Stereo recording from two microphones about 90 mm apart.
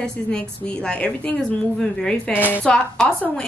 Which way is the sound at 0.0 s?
10° left (ahead or behind).